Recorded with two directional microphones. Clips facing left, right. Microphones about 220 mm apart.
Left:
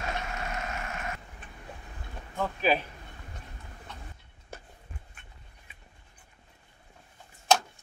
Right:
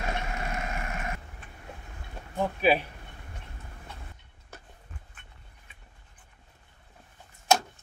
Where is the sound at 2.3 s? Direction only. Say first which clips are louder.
Right 3 dB; 15° right (ahead or behind).